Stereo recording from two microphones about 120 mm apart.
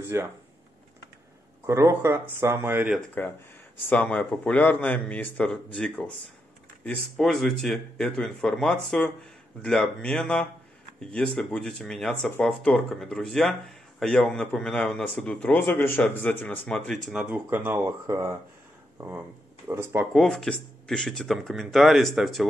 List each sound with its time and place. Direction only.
0.0 s speech: 20° right (ahead or behind)
1.7 s speech: 20° right (ahead or behind)
3.9 s speech: 10° left (ahead or behind)
17.1 s speech: 10° right (ahead or behind)
20.2 s speech: 5° left (ahead or behind)